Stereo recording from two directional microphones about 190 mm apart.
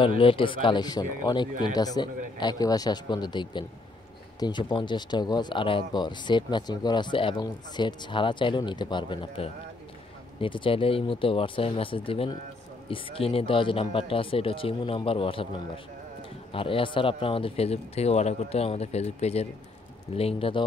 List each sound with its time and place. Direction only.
0.2 s speech: 30° left (ahead or behind)